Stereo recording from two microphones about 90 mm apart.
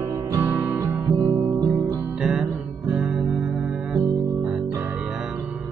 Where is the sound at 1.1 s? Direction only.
50° right (ahead or behind).